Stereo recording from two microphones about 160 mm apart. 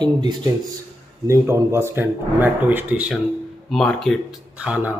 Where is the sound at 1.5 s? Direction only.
15° right (ahead or behind).